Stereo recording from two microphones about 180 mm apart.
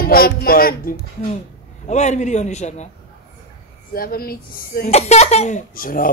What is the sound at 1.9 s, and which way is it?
Speech, 40° left (ahead or behind).